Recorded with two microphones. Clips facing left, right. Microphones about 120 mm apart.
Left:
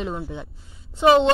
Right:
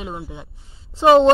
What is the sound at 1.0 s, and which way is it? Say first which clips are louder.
Speech: right 3 dB; 40° right (ahead or behind).